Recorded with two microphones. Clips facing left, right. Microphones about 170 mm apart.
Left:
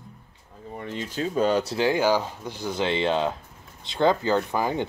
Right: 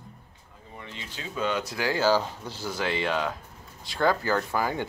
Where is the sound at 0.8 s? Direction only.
45° left (ahead or behind).